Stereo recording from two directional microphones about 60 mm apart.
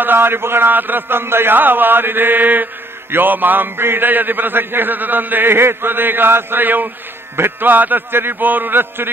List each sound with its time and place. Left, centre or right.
0.0 s a man's voice: right